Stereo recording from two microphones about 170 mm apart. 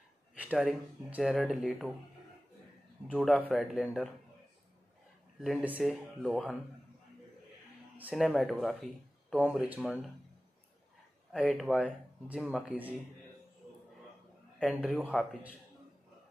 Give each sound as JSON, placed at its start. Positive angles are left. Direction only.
{"t": 0.4, "sound": "speech", "side_deg": -5}
{"t": 3.1, "sound": "speech", "side_deg": 5}
{"t": 5.4, "sound": "speech", "side_deg": -5}
{"t": 8.0, "sound": "speech", "side_deg": -5}
{"t": 11.4, "sound": "speech", "side_deg": 5}
{"t": 12.3, "sound": "speech", "side_deg": -5}
{"t": 14.6, "sound": "speech", "side_deg": -5}
{"t": 15.1, "sound": "speech", "side_deg": 5}